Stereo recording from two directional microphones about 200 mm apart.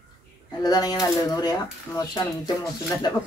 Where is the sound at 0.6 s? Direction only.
20° left (ahead or behind).